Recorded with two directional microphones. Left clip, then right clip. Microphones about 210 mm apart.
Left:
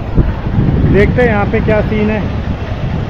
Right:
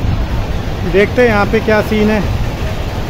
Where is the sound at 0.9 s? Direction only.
10° right (ahead or behind).